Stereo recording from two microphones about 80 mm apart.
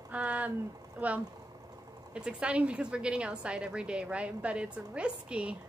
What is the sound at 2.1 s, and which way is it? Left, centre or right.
A woman's voice, centre.